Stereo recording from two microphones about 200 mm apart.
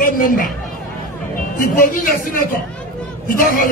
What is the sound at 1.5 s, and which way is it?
A man's voice, 45° left (ahead or behind).